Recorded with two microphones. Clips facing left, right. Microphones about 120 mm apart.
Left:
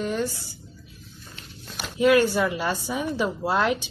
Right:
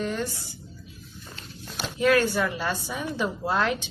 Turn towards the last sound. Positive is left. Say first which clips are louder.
# left 2 dB
turn(degrees=10)  # may be behind; listen again after turning